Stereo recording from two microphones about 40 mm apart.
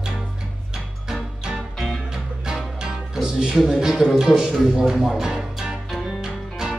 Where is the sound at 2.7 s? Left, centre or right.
Centre.